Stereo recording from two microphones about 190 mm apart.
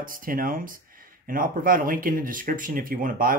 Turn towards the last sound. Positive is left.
turn(degrees=-45)  # may be behind; listen again after turning